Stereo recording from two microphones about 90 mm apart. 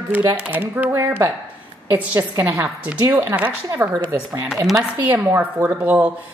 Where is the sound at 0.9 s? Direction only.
30° right (ahead or behind).